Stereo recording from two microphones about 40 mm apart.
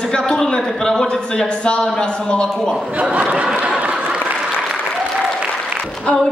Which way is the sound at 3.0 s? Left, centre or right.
Right.